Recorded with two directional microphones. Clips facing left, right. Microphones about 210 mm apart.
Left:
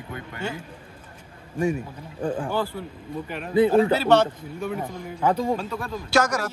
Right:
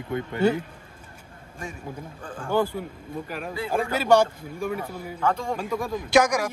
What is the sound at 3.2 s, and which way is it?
A man's voice, 5° right (ahead or behind).